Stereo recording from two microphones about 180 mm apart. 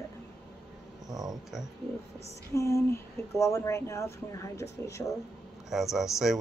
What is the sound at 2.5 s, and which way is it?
Speech, 15° left (ahead or behind).